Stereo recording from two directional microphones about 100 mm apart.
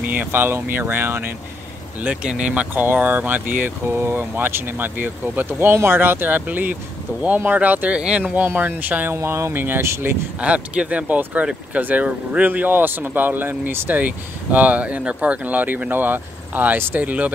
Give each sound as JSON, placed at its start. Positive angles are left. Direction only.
{"t": 0.0, "sound": "speech", "side_deg": -15}
{"t": 10.4, "sound": "speech", "side_deg": -10}